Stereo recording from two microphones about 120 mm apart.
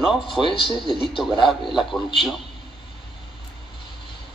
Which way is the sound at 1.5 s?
Centre (ahead or behind).